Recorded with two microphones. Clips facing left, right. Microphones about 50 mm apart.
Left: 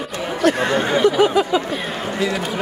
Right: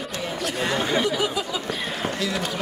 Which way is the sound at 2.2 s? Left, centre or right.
Left.